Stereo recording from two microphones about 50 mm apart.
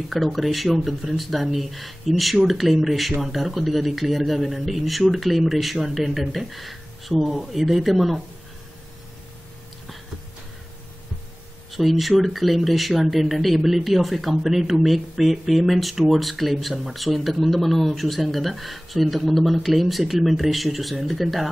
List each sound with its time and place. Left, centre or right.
0.1 s speech: centre
11.7 s speech: centre